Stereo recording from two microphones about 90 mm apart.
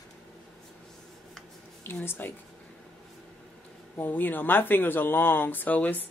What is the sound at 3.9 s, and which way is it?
Speech, 20° left (ahead or behind).